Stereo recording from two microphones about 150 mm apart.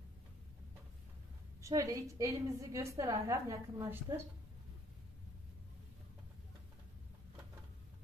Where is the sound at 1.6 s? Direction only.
20° right (ahead or behind).